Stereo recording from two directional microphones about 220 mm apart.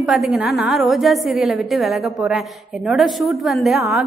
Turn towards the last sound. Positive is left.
turn(degrees=0)  # may be behind; listen again after turning